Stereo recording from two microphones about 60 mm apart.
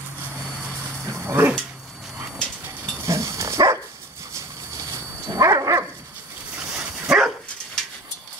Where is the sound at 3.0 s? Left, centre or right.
Right.